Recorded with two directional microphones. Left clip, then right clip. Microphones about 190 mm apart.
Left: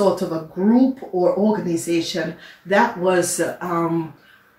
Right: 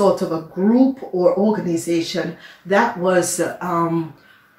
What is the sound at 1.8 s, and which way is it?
Speech, 15° right (ahead or behind).